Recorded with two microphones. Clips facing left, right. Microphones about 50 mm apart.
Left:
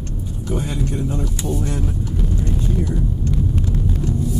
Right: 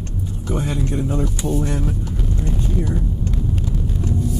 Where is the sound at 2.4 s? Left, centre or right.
Centre.